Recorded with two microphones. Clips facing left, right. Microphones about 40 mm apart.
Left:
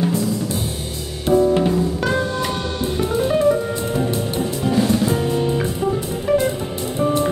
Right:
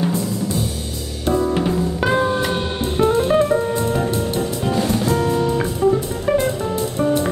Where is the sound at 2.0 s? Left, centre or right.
Centre.